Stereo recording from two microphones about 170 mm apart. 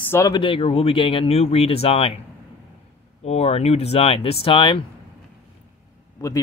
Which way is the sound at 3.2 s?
40° left (ahead or behind).